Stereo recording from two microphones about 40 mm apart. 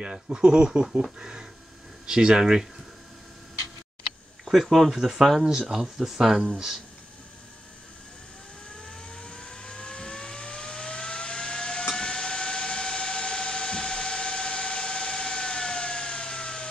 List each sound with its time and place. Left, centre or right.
0.0 s speech: right
4.5 s speech: centre
8.7 s vehicle: left